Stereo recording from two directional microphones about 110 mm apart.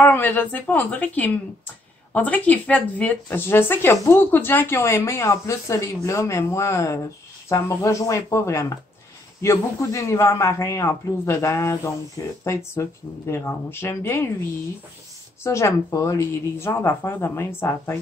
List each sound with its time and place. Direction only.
0.0 s speech: 20° left (ahead or behind)
15.4 s speech: 30° left (ahead or behind)